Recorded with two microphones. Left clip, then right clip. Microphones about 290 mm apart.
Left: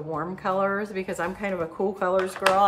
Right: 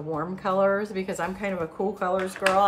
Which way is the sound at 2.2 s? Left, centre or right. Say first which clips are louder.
Left 3 dB; centre.